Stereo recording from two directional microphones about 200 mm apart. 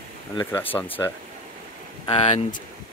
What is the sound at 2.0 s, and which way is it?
Speech, 30° left (ahead or behind).